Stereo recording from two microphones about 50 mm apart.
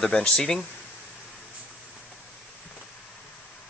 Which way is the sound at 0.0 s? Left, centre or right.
Centre.